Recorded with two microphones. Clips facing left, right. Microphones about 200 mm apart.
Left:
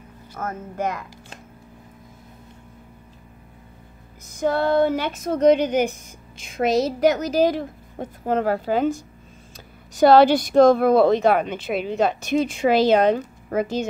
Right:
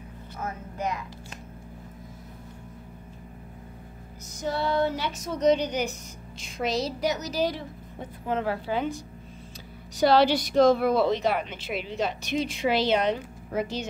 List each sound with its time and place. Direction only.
0.4 s a woman's voice: 50° left (ahead or behind)
4.4 s a woman's voice: 55° left (ahead or behind)
9.9 s a woman's voice: 50° left (ahead or behind)